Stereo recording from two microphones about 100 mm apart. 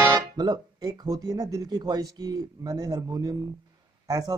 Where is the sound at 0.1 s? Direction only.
45° right (ahead or behind).